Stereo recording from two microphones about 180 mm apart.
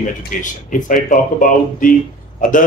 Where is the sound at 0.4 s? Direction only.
45° left (ahead or behind).